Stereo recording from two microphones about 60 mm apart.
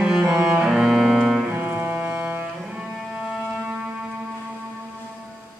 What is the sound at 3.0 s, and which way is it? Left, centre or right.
Cello, centre.